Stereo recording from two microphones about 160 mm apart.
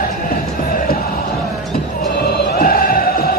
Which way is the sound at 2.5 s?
65° left (ahead or behind).